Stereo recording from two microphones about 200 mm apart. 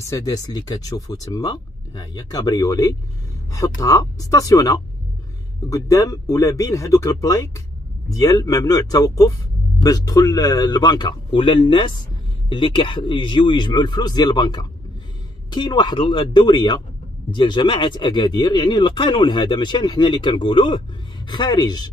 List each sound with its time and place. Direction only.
0.1 s speech: 20° left (ahead or behind)